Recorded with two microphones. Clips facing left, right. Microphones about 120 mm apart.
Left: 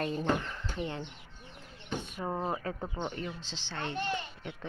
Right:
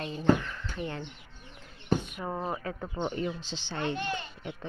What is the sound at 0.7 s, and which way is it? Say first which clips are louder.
Speech: even; 25° left (ahead or behind).